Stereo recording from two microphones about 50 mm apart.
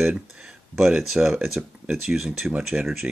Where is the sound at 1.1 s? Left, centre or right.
Centre.